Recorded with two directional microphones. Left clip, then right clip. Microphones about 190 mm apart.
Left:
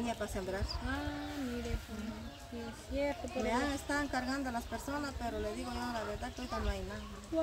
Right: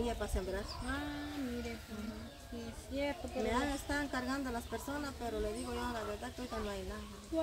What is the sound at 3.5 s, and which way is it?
Speech, 15° left (ahead or behind).